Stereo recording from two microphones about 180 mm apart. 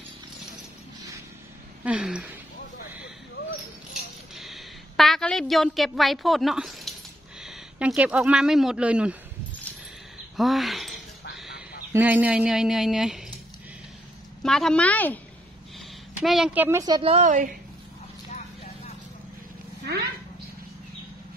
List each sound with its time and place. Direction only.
1.9 s a woman's voice: 5° right (ahead or behind)
4.4 s a sound: centre (ahead or behind)
7.4 s speech: 5° right (ahead or behind)
10.3 s a sound: centre (ahead or behind)
11.3 s fowl: centre (ahead or behind)
11.9 s a woman's voice: 10° right (ahead or behind)
14.4 s a woman's voice: centre (ahead or behind)
16.2 s speech: 5° right (ahead or behind); by 17.0 s 20° right (ahead or behind)
17.0 s a woman's voice: 40° right (ahead or behind)
19.8 s roaring cats: 65° right (ahead or behind)